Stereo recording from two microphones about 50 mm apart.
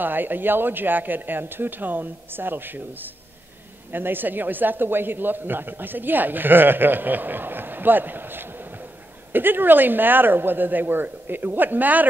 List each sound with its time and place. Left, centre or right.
0.0 s a man's voice: right